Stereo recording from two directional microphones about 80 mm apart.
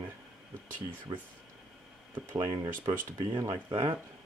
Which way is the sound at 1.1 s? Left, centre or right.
Right.